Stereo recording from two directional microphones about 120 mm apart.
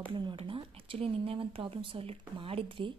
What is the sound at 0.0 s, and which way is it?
Speech, 45° right (ahead or behind).